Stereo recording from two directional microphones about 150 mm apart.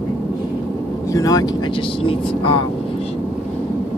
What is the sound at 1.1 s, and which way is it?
Speech, 25° left (ahead or behind).